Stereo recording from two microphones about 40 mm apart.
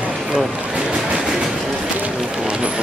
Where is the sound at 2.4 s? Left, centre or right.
Right.